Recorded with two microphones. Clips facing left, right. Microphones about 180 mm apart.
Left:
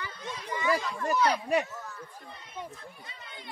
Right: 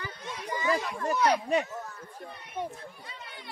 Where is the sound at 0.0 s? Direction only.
40° right (ahead or behind).